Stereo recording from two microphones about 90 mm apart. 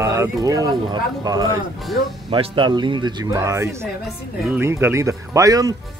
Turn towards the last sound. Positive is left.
turn(degrees=-40)  # may be behind; listen again after turning